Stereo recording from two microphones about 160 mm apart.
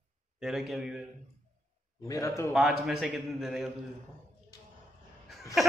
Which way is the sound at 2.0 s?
20° left (ahead or behind).